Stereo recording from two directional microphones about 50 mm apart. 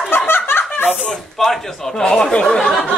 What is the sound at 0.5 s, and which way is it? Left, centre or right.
Snicker, left.